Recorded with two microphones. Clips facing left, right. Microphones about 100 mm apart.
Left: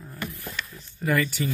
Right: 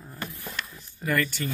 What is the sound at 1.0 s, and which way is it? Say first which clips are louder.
Speech: left 2 dB; 5° left (ahead or behind).